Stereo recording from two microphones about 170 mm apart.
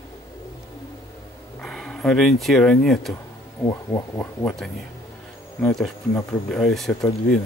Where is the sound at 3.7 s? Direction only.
25° left (ahead or behind).